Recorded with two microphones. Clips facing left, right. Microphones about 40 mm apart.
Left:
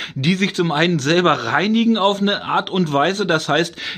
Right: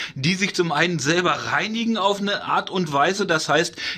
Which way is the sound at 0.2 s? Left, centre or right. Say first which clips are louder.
Left 3 dB; left.